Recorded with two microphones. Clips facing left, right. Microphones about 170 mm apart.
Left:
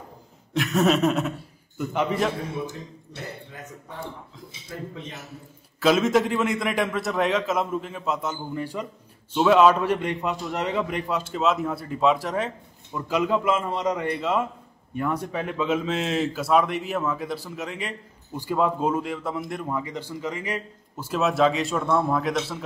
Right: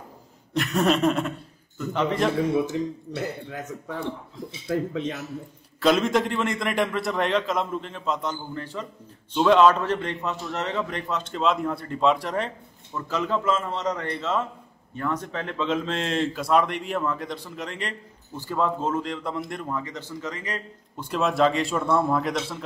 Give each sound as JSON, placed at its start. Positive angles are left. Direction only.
{"t": 0.5, "sound": "a man's voice", "side_deg": 0}
{"t": 4.6, "sound": "speech", "side_deg": -90}
{"t": 5.8, "sound": "a man's voice", "side_deg": 0}